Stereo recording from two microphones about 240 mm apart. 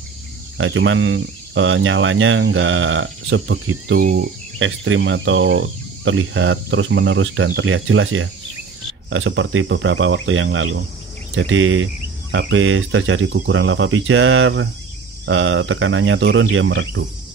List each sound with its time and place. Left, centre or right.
0.6 s speech: right
4.0 s speech: right
4.6 s speech: right